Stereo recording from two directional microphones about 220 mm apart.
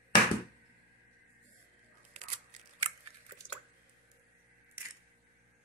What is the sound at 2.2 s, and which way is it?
Scissors, 30° right (ahead or behind).